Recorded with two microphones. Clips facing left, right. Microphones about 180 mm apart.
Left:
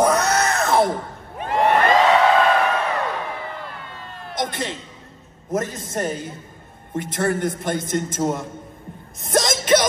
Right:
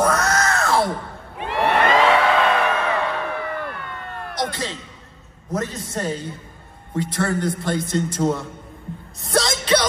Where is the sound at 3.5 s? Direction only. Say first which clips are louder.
Right 5 dB; 60° right (ahead or behind).